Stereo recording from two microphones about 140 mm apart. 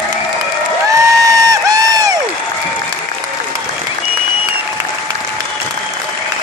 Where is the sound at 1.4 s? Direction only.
25° right (ahead or behind).